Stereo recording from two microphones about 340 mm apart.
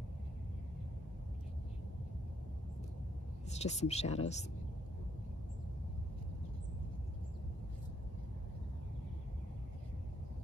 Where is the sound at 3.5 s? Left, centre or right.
Centre.